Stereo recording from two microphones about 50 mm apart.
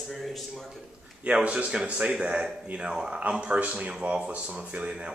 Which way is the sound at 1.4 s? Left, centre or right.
Right.